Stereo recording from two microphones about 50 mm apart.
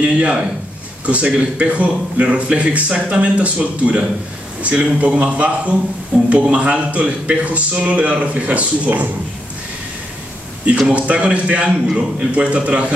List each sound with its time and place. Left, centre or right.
0.0 s speech: right
10.9 s speech: right